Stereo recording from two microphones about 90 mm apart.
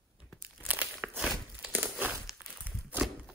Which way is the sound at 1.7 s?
20° right (ahead or behind).